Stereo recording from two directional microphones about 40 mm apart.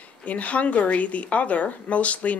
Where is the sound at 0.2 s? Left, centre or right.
Left.